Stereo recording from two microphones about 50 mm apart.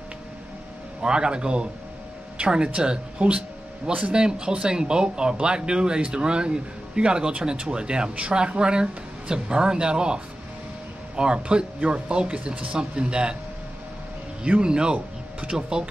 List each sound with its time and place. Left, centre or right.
1.0 s speech: centre
14.4 s speech: centre